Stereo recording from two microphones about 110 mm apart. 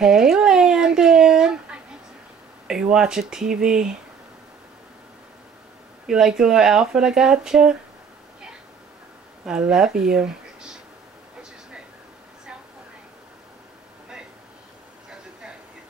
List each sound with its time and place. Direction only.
0.0 s a sound: 5° right (ahead or behind)
2.7 s speech: 5° right (ahead or behind)
6.0 s speech: 5° right (ahead or behind)
9.4 s speech: 5° right (ahead or behind)